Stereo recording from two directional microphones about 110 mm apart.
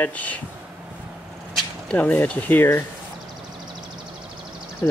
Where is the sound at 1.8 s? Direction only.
15° left (ahead or behind).